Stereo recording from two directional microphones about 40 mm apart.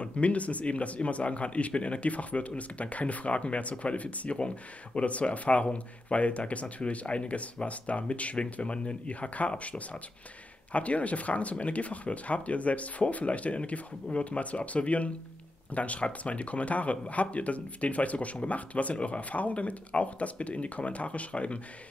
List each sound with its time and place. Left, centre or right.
0.0 s speech: left